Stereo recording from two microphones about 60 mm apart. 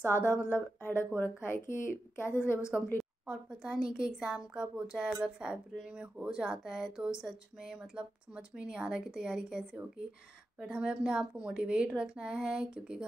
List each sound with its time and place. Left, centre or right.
0.0 s a woman's voice: left
3.3 s speech: centre
10.7 s speech: centre